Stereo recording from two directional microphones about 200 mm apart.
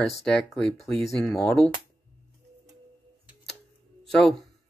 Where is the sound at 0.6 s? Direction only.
5° left (ahead or behind).